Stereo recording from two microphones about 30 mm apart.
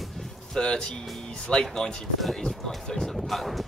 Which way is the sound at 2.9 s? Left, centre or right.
Centre.